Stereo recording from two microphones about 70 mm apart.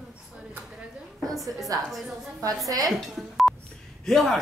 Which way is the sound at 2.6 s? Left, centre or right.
Right.